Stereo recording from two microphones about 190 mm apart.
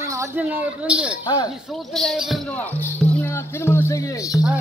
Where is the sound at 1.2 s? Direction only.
20° left (ahead or behind).